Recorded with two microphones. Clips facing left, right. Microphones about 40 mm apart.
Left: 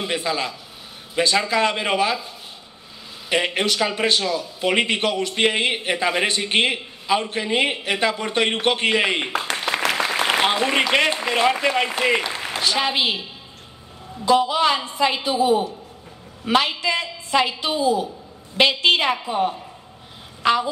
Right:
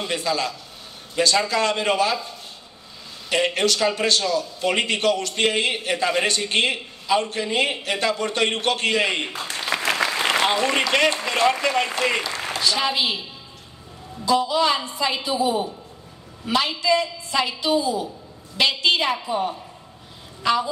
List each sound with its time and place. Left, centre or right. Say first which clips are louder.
0.0 s a man's voice: even; left
3.3 s a man's voice: even; left
10.3 s a man's voice: left 2 dB; left
14.2 s a woman's voice: left 2 dB; left
19.0 s a man's voice: left 2 dB; left